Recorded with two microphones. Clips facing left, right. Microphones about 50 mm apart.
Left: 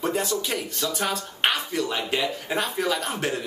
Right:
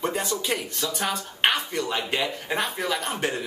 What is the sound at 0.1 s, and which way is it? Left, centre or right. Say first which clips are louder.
Speech: left 1 dB; centre.